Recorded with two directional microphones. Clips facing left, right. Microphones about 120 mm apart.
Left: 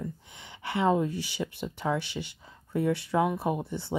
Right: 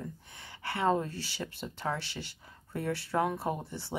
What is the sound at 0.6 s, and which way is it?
Speech, 20° left (ahead or behind).